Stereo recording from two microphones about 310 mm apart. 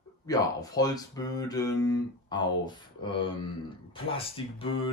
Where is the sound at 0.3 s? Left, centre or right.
Centre.